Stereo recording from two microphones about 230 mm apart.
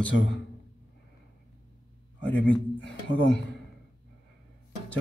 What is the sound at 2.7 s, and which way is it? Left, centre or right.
Speech, left.